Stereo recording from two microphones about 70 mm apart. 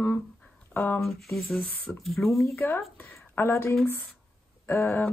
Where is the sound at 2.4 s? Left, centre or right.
Left.